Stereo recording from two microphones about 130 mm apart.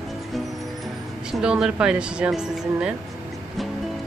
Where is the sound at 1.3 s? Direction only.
5° right (ahead or behind).